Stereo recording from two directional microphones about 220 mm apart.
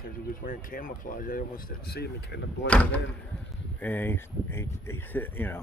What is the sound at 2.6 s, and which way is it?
Speech, 5° left (ahead or behind).